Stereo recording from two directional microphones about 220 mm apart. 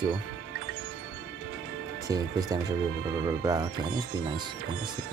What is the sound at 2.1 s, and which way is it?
Speech, 15° right (ahead or behind).